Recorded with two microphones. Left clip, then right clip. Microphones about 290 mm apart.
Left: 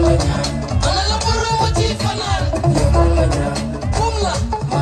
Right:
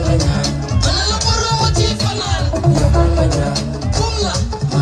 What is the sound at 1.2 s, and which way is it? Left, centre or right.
Music, left.